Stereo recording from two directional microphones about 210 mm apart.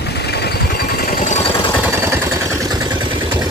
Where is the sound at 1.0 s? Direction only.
40° left (ahead or behind).